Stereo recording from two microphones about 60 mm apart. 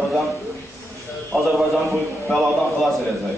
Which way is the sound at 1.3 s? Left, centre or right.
Centre.